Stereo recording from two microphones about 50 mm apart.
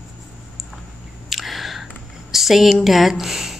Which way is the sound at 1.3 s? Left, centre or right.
Centre.